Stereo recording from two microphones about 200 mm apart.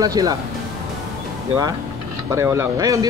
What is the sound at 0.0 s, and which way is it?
Speech, 15° right (ahead or behind).